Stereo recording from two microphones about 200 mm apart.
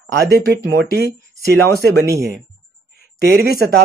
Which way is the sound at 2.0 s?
15° right (ahead or behind).